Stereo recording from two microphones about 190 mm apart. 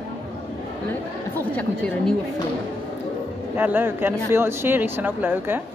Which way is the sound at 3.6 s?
10° right (ahead or behind).